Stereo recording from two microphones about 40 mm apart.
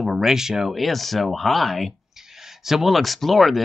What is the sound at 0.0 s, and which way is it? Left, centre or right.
Speech, centre.